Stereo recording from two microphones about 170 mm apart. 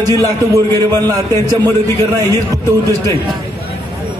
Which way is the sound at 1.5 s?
20° right (ahead or behind).